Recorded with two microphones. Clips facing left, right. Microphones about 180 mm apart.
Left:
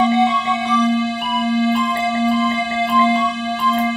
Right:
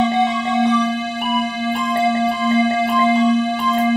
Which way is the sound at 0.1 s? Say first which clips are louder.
Left 1 dB; 45° right (ahead or behind).